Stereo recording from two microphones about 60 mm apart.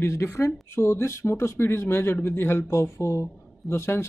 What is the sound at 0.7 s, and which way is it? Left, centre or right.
Speech, left.